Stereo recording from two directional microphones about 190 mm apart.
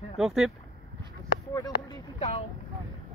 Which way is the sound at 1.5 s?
20° left (ahead or behind).